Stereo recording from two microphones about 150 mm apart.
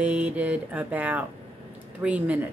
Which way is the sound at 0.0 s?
10° right (ahead or behind).